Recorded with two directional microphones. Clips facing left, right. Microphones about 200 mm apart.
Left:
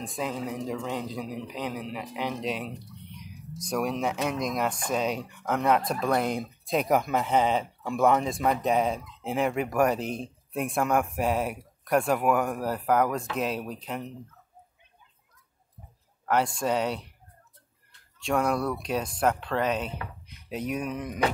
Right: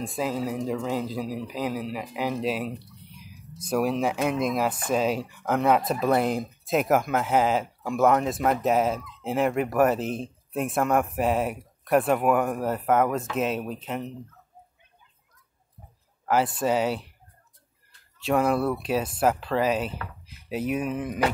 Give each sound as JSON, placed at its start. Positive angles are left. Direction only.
{"t": 0.1, "sound": "a man's voice", "side_deg": -5}
{"t": 16.3, "sound": "a man's voice", "side_deg": -5}
{"t": 18.2, "sound": "a man's voice", "side_deg": -5}